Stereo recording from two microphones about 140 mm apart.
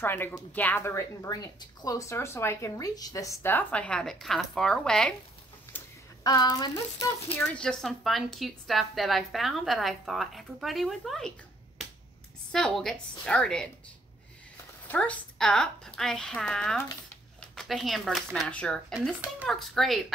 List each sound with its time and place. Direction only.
0.0 s speech: 15° left (ahead or behind)
6.2 s speech: 30° left (ahead or behind)
7.3 s speech: 5° left (ahead or behind)
12.5 s speech: 5° left (ahead or behind)
14.9 s speech: 10° left (ahead or behind)